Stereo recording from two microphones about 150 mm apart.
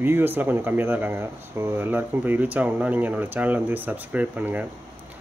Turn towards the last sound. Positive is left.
turn(degrees=-10)  # may be behind; listen again after turning